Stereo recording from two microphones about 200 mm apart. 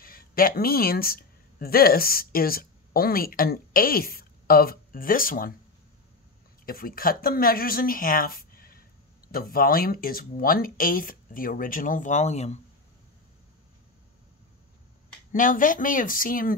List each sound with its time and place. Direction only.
0.0 s speech: 45° left (ahead or behind)
6.6 s speech: 45° left (ahead or behind)
15.3 s speech: 40° left (ahead or behind)